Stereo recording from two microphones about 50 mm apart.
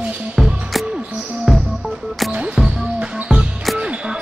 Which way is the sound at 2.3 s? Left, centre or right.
Right.